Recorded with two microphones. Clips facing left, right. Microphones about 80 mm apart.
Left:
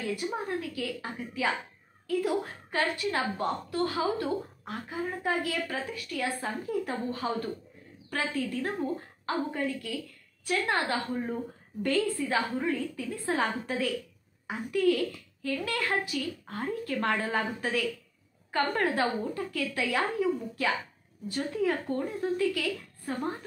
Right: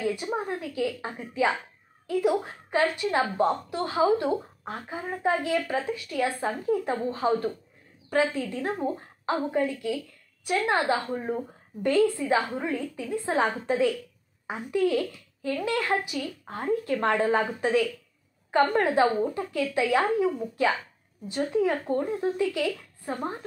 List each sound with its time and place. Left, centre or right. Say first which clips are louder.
0.0 s a woman's voice: right 4 dB; right